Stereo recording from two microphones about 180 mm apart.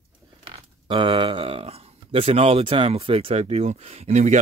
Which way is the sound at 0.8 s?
25° right (ahead or behind).